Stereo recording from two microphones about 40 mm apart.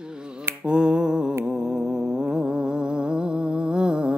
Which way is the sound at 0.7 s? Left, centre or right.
Right.